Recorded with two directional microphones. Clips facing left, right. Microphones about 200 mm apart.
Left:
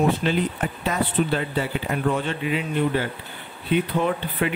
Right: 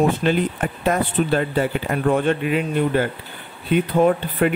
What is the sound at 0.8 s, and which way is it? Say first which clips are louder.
Speech: right 4 dB; 50° right (ahead or behind).